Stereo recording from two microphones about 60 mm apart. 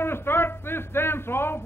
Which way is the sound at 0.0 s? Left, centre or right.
Left.